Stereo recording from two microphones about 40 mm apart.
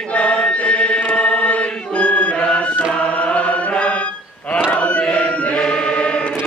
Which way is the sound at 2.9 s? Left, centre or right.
Left.